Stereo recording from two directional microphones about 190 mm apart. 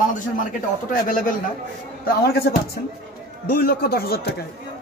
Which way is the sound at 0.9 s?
45° left (ahead or behind).